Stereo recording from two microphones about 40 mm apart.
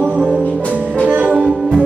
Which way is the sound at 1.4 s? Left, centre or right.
Centre.